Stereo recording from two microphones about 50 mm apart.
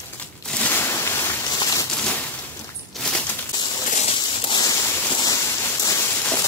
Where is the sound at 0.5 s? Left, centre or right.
Left.